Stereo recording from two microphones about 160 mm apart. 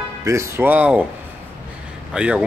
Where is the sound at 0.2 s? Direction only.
20° right (ahead or behind).